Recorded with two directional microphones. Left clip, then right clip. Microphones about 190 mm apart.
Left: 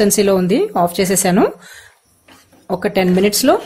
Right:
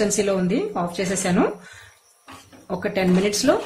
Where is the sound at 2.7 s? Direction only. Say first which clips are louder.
Left 6 dB; 50° left (ahead or behind).